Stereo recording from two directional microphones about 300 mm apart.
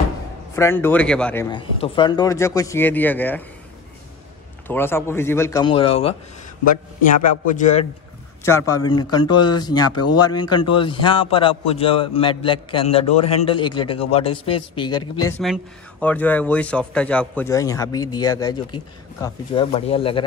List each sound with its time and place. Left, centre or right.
0.6 s a man's voice: centre
4.6 s a man's voice: centre; by 7.8 s left
8.5 s a man's voice: centre
9.8 s speech: left
10.7 s a man's voice: centre
15.2 s a man's voice: centre